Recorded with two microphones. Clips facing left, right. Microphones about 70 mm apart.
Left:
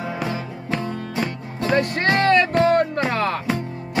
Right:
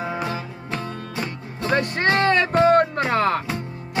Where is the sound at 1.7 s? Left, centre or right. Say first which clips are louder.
Left 2 dB; right.